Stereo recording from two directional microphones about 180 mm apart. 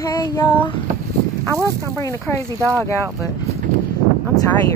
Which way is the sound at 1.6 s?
15° left (ahead or behind).